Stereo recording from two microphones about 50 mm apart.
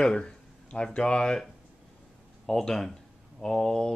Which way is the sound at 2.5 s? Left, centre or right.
Centre.